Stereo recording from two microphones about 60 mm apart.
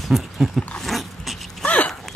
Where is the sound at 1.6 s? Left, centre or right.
Left.